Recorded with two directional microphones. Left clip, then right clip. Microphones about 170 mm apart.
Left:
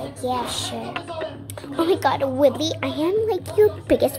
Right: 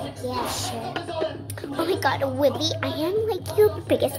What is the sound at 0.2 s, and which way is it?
Speech, 40° left (ahead or behind).